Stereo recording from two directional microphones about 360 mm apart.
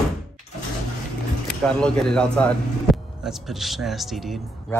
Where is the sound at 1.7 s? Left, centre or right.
Centre.